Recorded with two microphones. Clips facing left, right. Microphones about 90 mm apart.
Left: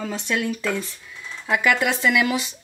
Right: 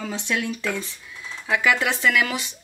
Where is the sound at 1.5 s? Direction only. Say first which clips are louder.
Left 1 dB; 5° left (ahead or behind).